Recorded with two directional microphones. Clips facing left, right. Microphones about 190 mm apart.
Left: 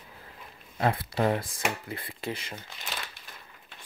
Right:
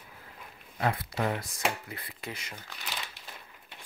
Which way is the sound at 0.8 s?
30° left (ahead or behind).